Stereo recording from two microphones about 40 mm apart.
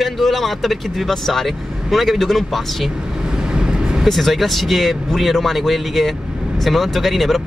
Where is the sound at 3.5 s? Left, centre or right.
Right.